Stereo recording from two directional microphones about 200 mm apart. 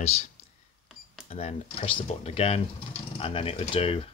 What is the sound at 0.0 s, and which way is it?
Speech, 30° left (ahead or behind).